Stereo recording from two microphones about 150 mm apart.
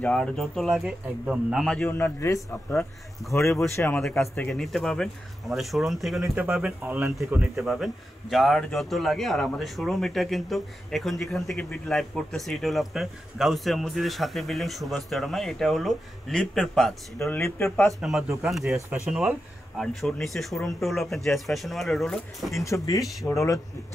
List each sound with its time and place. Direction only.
0.0 s a man's voice: 5° left (ahead or behind)
17.2 s speech: 15° left (ahead or behind)
17.6 s a man's voice: centre (ahead or behind)
22.6 s speech: 20° left (ahead or behind)